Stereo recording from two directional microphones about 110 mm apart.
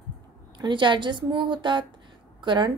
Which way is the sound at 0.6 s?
45° right (ahead or behind).